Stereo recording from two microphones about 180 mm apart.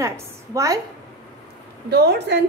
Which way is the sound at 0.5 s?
20° right (ahead or behind).